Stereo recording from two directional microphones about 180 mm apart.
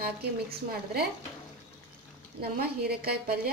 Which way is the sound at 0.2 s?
60° right (ahead or behind).